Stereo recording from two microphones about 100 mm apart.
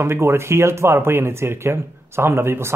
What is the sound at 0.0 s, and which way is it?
Speech, 25° right (ahead or behind).